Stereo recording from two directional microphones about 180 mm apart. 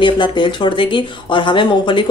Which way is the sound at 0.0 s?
25° left (ahead or behind).